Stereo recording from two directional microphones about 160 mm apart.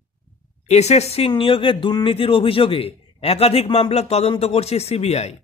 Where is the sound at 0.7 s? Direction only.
45° left (ahead or behind).